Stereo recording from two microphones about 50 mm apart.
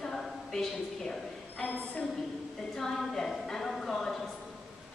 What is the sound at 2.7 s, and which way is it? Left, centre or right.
A woman's voice, centre.